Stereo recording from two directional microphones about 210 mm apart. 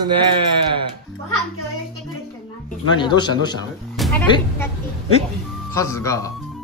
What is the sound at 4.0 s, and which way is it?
Speech, 10° left (ahead or behind).